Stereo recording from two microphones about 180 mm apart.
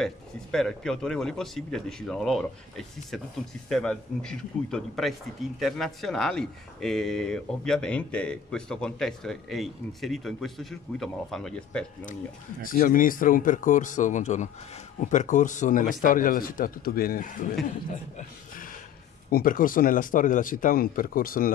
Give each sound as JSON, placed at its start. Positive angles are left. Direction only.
{"t": 0.0, "sound": "speech", "side_deg": 5}
{"t": 12.6, "sound": "speech", "side_deg": 50}
{"t": 19.3, "sound": "speech", "side_deg": 50}